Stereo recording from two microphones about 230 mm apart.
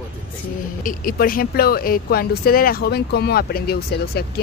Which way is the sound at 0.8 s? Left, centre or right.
Left.